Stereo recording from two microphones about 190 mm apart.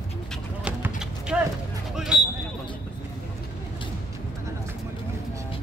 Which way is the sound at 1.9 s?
5° right (ahead or behind).